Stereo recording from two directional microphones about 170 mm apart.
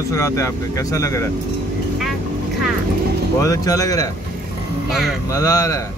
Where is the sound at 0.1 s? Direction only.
20° left (ahead or behind).